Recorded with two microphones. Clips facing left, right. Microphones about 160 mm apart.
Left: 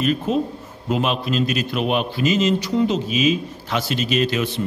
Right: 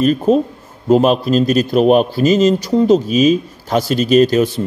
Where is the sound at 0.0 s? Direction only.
40° right (ahead or behind).